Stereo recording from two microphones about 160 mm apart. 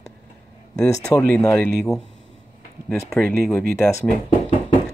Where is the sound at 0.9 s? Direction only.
20° left (ahead or behind).